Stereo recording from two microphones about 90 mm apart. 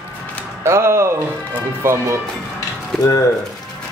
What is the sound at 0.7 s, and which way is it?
Speech, 30° right (ahead or behind).